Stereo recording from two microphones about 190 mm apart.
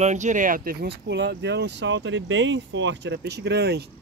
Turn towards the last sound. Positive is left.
turn(degrees=-60)  # may be behind; listen again after turning